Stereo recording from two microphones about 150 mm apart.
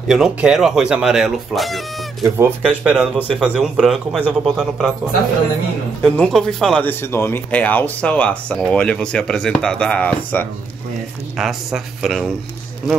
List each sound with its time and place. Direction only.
0.1 s a man's voice: 5° right (ahead or behind)
2.2 s speech: 15° right (ahead or behind)
2.6 s a man's voice: 5° right (ahead or behind)
6.0 s a man's voice: 5° left (ahead or behind)
6.9 s a man's voice: 15° left (ahead or behind); by 12.3 s centre (ahead or behind)